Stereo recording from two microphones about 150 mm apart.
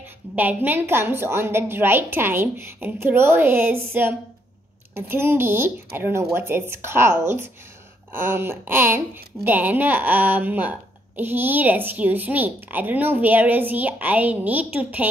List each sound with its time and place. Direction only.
0.4 s a woman's voice: 10° right (ahead or behind)